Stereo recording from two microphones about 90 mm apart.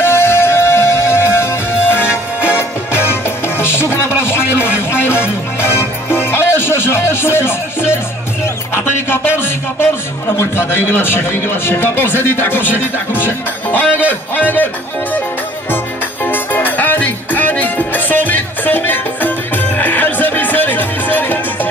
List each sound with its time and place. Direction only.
0.0 s music: 25° left (ahead or behind)
8.7 s speech: 25° left (ahead or behind)
16.3 s music: 20° left (ahead or behind)